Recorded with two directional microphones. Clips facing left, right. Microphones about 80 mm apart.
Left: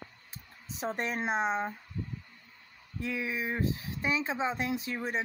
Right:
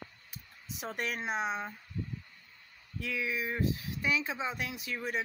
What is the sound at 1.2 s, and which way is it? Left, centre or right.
Speech, left.